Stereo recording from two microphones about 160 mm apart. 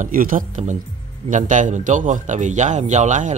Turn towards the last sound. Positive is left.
turn(degrees=-50)  # may be behind; listen again after turning